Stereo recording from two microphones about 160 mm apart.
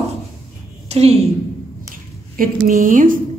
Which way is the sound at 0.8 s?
40° right (ahead or behind).